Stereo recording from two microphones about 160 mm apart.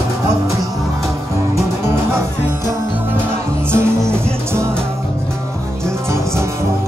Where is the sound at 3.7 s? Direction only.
15° right (ahead or behind).